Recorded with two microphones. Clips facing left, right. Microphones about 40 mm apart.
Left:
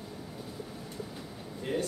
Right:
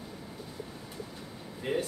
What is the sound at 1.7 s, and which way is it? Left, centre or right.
Speech, centre.